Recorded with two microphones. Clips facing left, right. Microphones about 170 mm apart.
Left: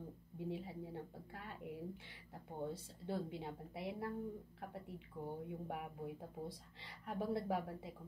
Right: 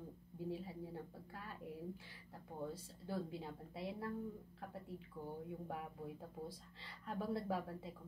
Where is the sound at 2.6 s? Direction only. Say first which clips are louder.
Left 2 dB; 25° left (ahead or behind).